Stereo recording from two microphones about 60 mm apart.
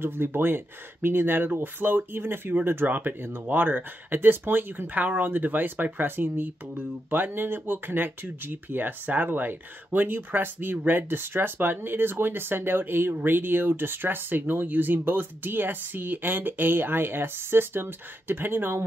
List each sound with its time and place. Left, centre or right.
0.0 s speech: right